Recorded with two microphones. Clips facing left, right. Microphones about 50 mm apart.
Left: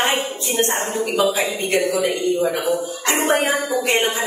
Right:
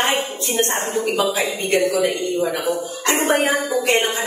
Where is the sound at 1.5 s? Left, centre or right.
Centre.